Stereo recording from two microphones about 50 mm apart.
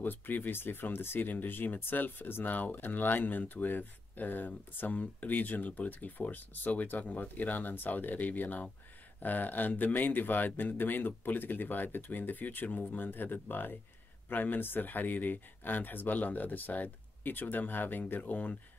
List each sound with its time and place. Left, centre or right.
0.0 s speech: left